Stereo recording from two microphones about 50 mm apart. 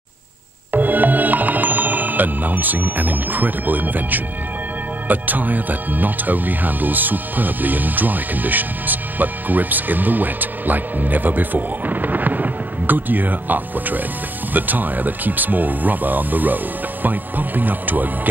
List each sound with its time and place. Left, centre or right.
0.7 s music: right
5.0 s speech: right